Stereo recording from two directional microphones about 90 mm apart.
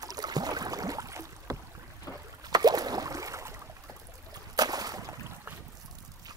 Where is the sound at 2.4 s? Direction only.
50° right (ahead or behind).